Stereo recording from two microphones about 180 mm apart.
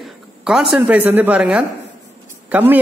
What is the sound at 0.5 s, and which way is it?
A man's voice, 5° right (ahead or behind).